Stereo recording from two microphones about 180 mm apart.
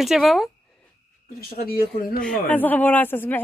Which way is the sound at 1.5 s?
55° left (ahead or behind).